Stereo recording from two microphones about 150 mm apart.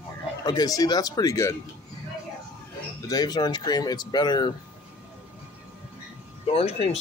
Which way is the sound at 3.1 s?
25° left (ahead or behind).